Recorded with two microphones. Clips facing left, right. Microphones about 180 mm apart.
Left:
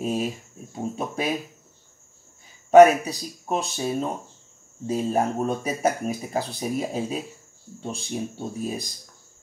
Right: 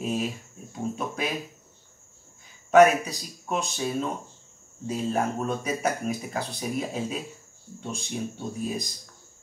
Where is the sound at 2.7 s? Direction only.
35° left (ahead or behind).